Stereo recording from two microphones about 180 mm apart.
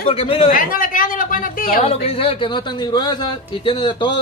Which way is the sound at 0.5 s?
50° left (ahead or behind).